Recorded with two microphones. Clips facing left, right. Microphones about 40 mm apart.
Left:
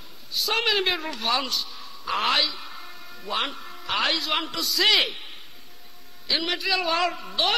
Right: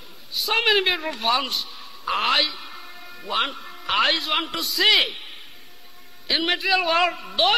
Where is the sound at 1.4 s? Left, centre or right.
Right.